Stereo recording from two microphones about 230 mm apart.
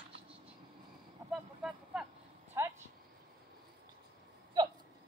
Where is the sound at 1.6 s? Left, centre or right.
Centre.